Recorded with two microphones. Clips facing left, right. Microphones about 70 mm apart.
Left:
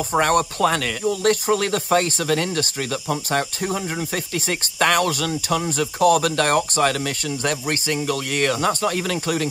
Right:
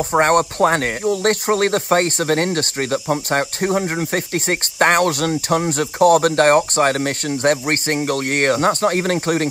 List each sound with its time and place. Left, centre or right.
0.2 s speech: right